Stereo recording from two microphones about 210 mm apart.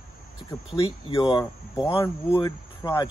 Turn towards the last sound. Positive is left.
turn(degrees=20)  # may be behind; listen again after turning